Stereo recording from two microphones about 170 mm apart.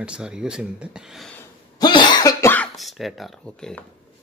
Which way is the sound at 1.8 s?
25° left (ahead or behind).